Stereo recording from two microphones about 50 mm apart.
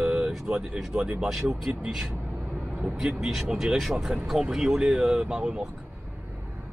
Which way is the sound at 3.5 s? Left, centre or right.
Centre.